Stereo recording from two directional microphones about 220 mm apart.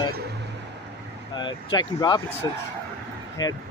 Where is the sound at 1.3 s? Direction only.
20° left (ahead or behind).